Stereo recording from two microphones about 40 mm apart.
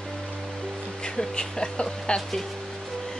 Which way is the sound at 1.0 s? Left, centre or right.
Centre.